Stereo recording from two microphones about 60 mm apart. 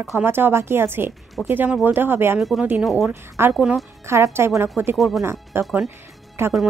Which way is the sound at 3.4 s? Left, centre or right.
Right.